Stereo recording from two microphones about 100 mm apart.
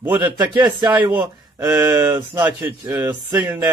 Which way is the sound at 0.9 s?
15° right (ahead or behind).